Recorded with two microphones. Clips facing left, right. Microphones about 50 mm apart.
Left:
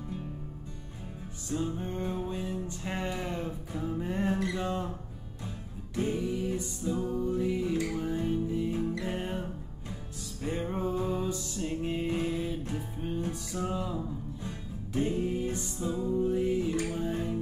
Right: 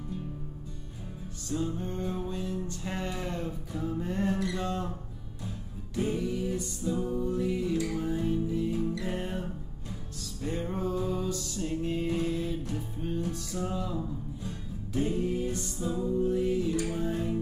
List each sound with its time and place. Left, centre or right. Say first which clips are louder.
1.5 s music: even; centre
6.1 s music: even; centre
9.1 s music: even; centre
10.4 s music: even; centre